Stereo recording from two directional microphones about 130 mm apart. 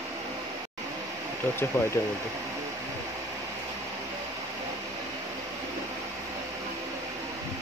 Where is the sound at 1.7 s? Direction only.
20° left (ahead or behind).